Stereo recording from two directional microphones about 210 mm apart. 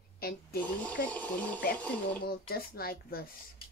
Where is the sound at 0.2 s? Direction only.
45° left (ahead or behind).